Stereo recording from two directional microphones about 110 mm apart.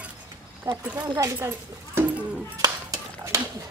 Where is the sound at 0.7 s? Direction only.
30° right (ahead or behind).